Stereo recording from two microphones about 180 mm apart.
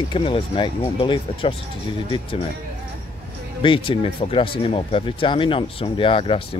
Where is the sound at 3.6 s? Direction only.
30° left (ahead or behind).